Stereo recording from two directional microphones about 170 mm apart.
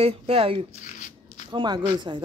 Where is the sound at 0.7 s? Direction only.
45° left (ahead or behind).